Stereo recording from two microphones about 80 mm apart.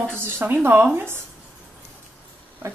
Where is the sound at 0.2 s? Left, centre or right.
Right.